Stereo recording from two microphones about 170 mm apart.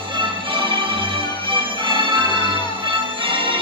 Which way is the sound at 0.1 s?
30° right (ahead or behind).